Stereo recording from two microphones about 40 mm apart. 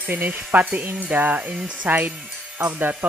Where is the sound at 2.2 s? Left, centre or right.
Centre.